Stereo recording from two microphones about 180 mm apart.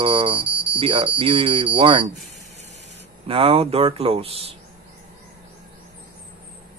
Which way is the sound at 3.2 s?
30° right (ahead or behind).